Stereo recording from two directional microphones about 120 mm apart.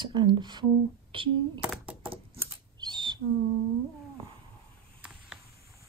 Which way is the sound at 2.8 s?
40° right (ahead or behind).